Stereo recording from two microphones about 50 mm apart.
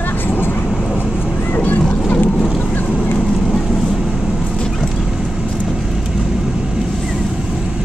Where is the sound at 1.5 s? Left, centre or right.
Left.